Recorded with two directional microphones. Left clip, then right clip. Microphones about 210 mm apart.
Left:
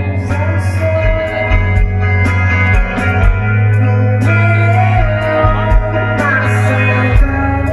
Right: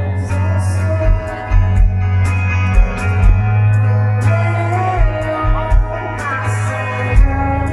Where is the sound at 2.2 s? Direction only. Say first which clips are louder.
Left 7 dB; 40° left (ahead or behind).